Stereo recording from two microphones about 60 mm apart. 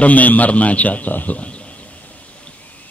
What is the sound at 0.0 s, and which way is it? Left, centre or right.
A man's voice, left.